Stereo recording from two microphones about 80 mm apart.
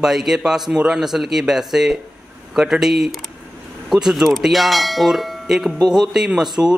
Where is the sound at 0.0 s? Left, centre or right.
Centre.